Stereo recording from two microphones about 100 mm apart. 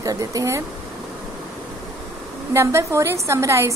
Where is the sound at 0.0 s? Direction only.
35° right (ahead or behind).